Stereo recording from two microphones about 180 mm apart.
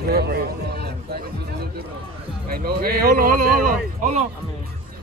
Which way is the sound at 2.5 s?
55° right (ahead or behind).